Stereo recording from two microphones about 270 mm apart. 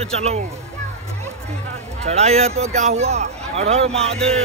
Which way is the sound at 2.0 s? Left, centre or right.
Right.